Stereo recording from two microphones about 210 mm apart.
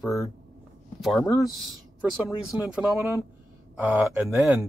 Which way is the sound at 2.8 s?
15° right (ahead or behind).